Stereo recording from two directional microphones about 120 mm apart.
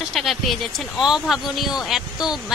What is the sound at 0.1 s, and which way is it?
Speech, centre (ahead or behind).